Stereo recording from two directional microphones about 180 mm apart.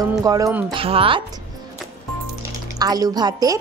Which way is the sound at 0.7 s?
30° right (ahead or behind).